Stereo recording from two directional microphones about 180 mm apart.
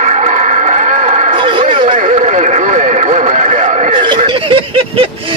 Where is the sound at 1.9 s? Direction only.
40° right (ahead or behind).